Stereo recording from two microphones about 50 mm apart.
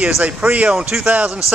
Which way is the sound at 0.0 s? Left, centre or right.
Right.